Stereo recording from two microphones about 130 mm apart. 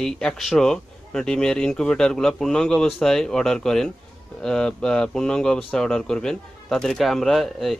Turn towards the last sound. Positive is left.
turn(degrees=0)  # may be behind; listen again after turning